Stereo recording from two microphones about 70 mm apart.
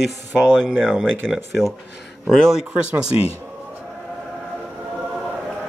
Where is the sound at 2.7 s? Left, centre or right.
Centre.